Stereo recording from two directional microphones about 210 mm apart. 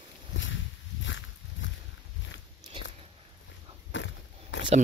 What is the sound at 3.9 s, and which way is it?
Biting, 60° left (ahead or behind).